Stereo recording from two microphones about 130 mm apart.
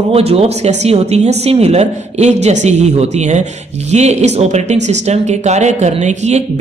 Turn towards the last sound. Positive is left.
turn(degrees=-60)  # may be behind; listen again after turning